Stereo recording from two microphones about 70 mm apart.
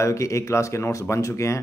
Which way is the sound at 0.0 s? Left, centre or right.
Left.